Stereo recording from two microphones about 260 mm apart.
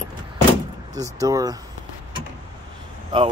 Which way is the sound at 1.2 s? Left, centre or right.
Centre.